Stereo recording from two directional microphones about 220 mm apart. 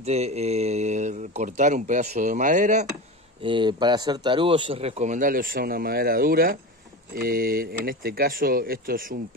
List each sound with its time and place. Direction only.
0.0 s speech: 30° right (ahead or behind)
3.4 s speech: 20° right (ahead or behind); by 9.2 s 40° right (ahead or behind)